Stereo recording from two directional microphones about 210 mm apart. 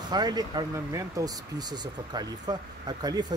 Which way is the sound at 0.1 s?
20° right (ahead or behind).